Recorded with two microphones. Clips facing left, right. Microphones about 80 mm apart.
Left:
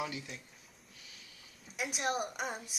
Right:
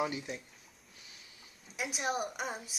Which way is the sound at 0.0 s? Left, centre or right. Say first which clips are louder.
Right 5 dB; right.